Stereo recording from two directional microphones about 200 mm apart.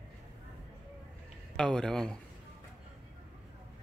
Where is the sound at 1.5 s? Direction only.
5° left (ahead or behind).